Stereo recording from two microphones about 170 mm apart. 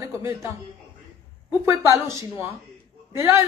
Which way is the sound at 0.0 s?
15° right (ahead or behind).